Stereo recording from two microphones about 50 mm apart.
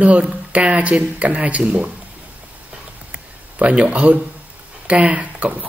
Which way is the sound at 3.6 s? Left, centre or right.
Right.